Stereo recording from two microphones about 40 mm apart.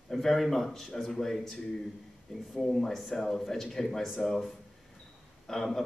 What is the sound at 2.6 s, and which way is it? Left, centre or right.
A man's voice, centre.